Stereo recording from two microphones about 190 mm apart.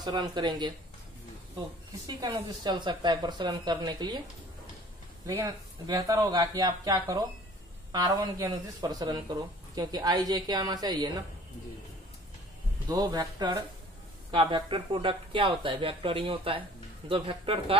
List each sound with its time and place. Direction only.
0.0 s speech: 20° right (ahead or behind)
2.0 s speech: 15° right (ahead or behind)
5.2 s speech: 15° right (ahead or behind)
12.8 s speech: 20° right (ahead or behind)